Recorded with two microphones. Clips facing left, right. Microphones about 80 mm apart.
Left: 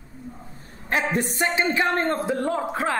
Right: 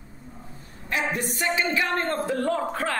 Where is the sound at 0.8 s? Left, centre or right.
Left.